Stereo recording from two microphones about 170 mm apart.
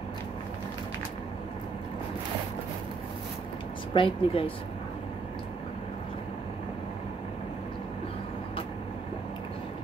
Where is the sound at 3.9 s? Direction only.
30° left (ahead or behind).